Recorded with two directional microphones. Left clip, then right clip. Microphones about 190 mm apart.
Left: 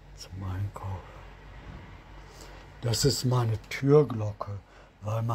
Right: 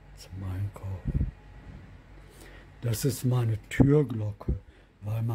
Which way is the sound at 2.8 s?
15° right (ahead or behind).